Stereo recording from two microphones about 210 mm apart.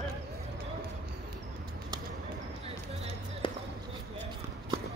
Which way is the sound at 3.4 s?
25° left (ahead or behind).